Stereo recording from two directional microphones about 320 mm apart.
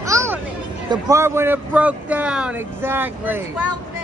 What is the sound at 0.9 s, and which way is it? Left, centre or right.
A man's voice, centre.